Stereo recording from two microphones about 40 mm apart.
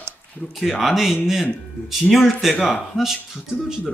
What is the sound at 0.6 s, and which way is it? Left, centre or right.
Speech, centre.